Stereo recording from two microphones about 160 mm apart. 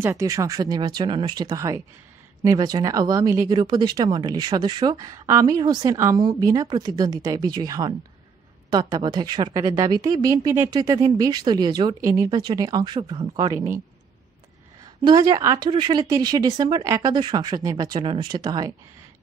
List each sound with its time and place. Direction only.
0.0 s speech: 20° right (ahead or behind)
10.7 s speech: 25° right (ahead or behind)
15.0 s speech: 25° right (ahead or behind)